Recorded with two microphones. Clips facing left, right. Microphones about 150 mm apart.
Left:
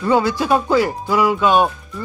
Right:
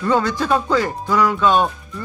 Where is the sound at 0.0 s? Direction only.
10° left (ahead or behind).